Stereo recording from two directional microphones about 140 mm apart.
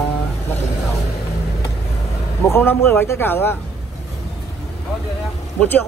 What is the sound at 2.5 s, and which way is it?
A man's voice, 15° left (ahead or behind).